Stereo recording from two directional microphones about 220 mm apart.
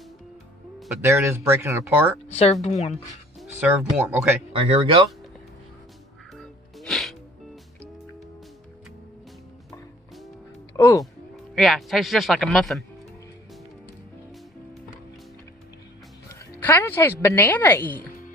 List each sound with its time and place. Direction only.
0.7 s speech: 10° right (ahead or behind)
2.3 s speech: 30° left (ahead or behind)
3.3 s speech: 10° right (ahead or behind)
4.5 s speech: 25° right (ahead or behind)
6.3 s music: centre (ahead or behind)
10.8 s a sound: 15° left (ahead or behind)
11.5 s speech: centre (ahead or behind)
16.3 s speech: 10° left (ahead or behind)